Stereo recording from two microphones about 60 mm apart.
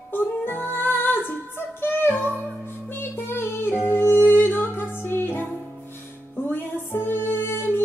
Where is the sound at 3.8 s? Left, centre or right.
Left.